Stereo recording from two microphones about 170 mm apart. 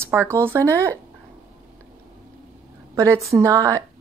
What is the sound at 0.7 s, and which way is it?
Speech, 10° left (ahead or behind).